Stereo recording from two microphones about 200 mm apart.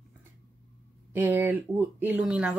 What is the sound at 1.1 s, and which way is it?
Speech, 10° right (ahead or behind).